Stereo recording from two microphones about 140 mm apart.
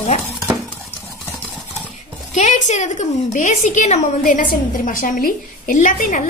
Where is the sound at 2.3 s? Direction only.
60° left (ahead or behind).